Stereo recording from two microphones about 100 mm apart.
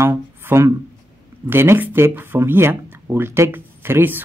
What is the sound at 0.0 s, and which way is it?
Speech, 25° right (ahead or behind).